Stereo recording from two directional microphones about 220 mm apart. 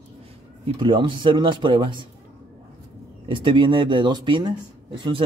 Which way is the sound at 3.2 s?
20° right (ahead or behind).